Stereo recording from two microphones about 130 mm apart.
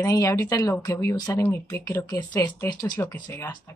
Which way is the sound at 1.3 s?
15° left (ahead or behind).